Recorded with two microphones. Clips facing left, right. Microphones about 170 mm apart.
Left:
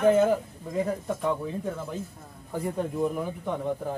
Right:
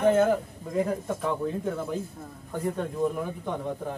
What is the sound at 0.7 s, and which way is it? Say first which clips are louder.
Speech: right 1 dB; centre (ahead or behind).